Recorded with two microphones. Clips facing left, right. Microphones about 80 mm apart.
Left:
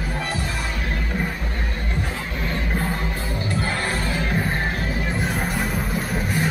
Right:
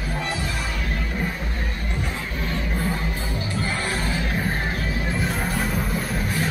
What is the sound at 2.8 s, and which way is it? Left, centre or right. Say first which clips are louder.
Music: even; left.